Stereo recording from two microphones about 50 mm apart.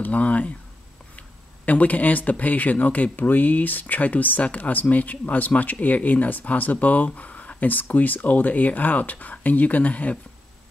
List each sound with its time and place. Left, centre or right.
0.0 s speech: left
1.7 s speech: left